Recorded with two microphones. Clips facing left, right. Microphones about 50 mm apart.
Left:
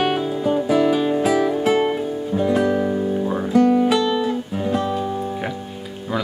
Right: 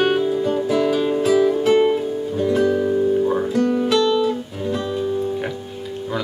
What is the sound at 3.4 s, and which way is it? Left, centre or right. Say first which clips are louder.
Guitar: left 3 dB; centre.